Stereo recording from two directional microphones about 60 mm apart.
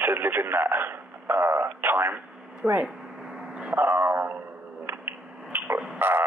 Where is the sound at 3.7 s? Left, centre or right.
Right.